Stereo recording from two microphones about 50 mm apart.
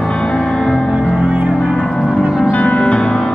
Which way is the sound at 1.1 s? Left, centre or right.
Centre.